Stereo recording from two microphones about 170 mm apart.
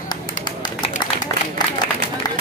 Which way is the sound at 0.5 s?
25° left (ahead or behind).